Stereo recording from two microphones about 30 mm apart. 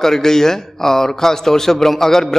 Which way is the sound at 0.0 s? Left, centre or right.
Centre.